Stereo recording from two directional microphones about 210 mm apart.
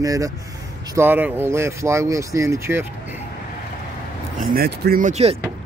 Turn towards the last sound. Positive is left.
turn(degrees=-35)  # may be behind; listen again after turning